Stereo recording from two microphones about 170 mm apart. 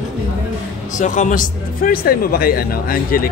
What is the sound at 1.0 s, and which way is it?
Speech, 45° left (ahead or behind).